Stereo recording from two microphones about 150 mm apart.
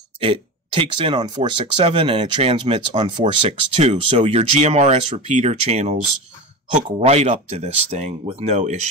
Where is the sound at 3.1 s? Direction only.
45° right (ahead or behind).